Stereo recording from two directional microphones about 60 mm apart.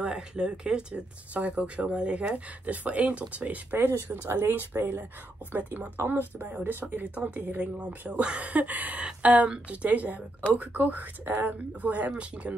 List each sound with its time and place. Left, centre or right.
0.0 s speech: centre
4.3 s speech: right
4.6 s speech: right